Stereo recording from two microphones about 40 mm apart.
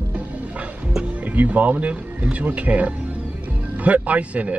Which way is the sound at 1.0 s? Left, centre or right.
Right.